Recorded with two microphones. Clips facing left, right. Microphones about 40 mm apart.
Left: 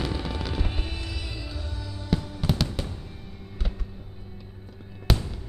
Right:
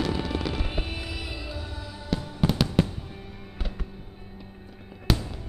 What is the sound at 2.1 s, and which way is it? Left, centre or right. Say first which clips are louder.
Music: left 2 dB; centre.